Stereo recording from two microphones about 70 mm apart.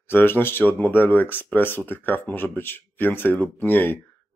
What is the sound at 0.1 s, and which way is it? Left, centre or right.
Speech, left.